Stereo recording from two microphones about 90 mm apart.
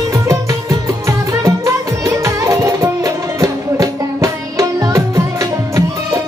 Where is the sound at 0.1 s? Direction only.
35° right (ahead or behind).